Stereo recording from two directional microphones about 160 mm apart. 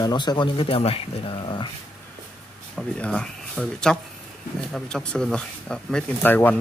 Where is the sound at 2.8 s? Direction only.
5° left (ahead or behind).